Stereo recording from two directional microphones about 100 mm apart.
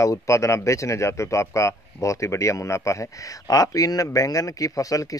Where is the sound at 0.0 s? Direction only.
30° left (ahead or behind).